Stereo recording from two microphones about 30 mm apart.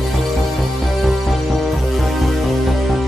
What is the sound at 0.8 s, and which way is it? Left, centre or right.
Music, centre.